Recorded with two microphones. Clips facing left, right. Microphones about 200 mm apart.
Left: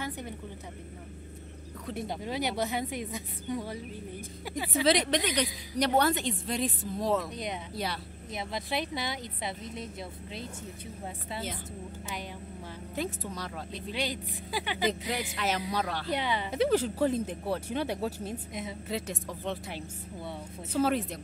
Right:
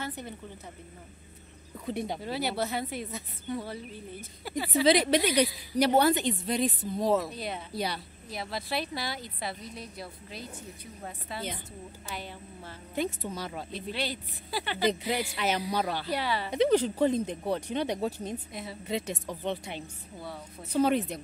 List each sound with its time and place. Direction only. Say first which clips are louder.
1.9 s a woman's voice: right 3 dB; centre (ahead or behind)
2.2 s a woman's voice: left 2 dB; 15° left (ahead or behind)
4.8 s a woman's voice: right 3 dB; 5° right (ahead or behind)
7.3 s a woman's voice: even; 15° left (ahead or behind)
7.7 s a woman's voice: right 5 dB; centre (ahead or behind)
8.3 s a woman's voice: even; 20° left (ahead or behind)
12.9 s a woman's voice: right 3 dB; centre (ahead or behind)
13.9 s a woman's voice: left 3 dB; 15° left (ahead or behind)
14.9 s a woman's voice: right 6 dB; centre (ahead or behind)
16.1 s a woman's voice: even; 20° left (ahead or behind)
16.4 s a woman's voice: right 3 dB; 5° left (ahead or behind)
18.5 s a woman's voice: left 2 dB; 20° left (ahead or behind)
18.9 s a woman's voice: right 5 dB; centre (ahead or behind)